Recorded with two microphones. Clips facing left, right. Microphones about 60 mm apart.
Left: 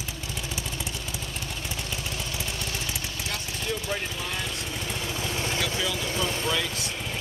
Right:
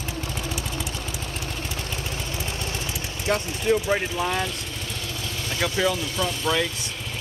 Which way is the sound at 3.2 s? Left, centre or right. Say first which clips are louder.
Right 12 dB; right.